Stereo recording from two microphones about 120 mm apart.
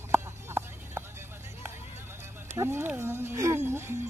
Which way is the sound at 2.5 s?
20° right (ahead or behind).